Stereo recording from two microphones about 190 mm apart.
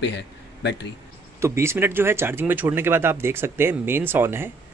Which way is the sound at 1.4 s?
15° right (ahead or behind).